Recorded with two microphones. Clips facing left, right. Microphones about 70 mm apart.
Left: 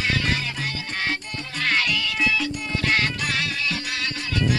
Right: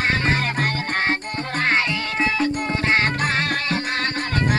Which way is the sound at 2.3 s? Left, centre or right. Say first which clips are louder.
Right 5 dB; right.